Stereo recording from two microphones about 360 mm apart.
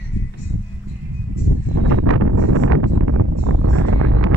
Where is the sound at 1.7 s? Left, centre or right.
Right.